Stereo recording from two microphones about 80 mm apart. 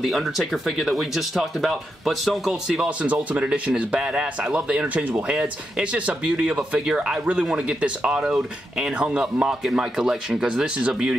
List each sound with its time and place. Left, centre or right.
0.0 s speech: centre
3.0 s speech: centre